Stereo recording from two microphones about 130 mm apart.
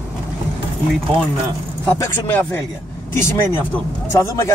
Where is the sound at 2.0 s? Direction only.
15° left (ahead or behind).